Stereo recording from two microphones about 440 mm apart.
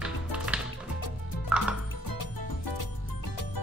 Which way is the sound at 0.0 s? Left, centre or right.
Centre.